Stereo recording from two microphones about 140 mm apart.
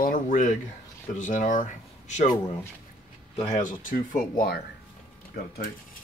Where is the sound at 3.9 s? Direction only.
80° left.